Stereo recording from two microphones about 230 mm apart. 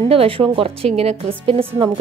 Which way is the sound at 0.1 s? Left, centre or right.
Right.